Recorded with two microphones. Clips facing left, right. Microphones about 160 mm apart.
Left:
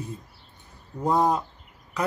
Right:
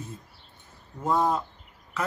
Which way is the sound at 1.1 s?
15° left (ahead or behind).